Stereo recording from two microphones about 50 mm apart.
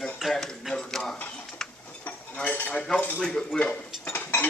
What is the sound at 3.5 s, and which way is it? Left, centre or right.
Stir, centre.